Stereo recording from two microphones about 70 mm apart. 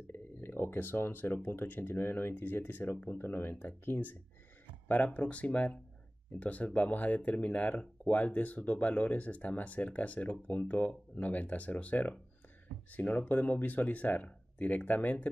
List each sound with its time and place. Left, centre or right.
0.1 s speech: left